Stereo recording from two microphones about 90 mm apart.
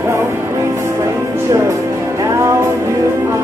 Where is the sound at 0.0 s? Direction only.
30° right (ahead or behind).